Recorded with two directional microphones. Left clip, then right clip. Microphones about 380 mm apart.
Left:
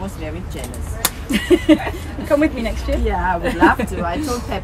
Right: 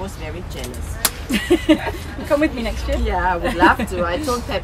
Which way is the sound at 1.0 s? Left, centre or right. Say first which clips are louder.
Left 1 dB; centre.